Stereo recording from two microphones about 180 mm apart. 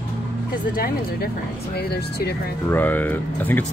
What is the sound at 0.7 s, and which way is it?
Speech, 55° left (ahead or behind).